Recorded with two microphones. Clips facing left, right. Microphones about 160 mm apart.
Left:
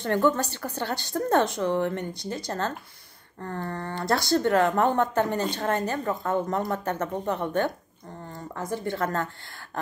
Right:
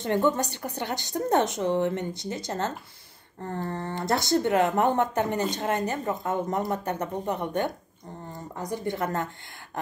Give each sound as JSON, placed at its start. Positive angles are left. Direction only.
{"t": 0.0, "sound": "speech", "side_deg": -20}
{"t": 3.7, "sound": "speech", "side_deg": -20}